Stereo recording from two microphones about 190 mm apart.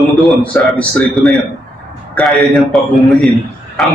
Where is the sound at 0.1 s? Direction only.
5° left (ahead or behind).